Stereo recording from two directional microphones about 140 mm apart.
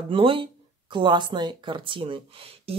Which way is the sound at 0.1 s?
40° right (ahead or behind).